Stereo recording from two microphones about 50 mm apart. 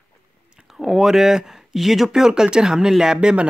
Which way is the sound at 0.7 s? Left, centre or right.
Centre.